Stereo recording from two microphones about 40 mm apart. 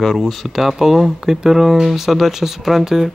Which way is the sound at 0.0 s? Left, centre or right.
Centre.